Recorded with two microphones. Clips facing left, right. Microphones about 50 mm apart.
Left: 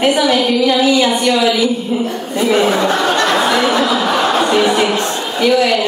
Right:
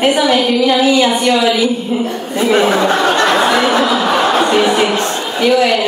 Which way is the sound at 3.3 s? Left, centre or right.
Centre.